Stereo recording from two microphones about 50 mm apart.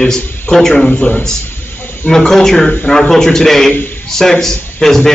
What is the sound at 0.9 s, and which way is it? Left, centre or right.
Speech, left.